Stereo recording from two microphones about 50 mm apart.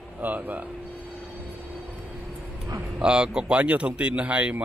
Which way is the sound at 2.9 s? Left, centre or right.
Centre.